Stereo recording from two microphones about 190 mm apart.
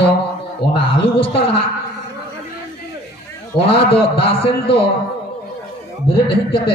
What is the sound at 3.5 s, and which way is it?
A man's voice, 30° left (ahead or behind).